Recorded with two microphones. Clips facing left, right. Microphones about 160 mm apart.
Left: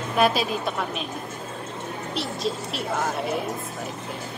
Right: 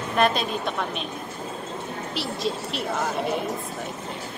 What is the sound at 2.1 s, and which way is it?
Speech, centre (ahead or behind).